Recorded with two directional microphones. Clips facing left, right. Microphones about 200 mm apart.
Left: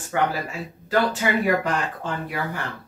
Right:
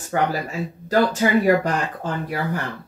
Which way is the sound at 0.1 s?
40° right (ahead or behind).